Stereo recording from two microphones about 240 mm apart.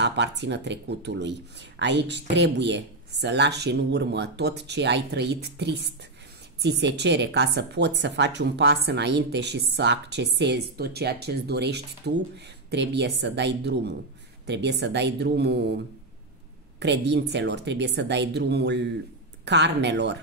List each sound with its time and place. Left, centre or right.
0.0 s speech: right
16.8 s speech: right